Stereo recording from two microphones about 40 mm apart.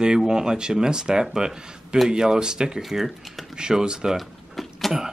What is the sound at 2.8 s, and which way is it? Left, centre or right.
Speech, centre.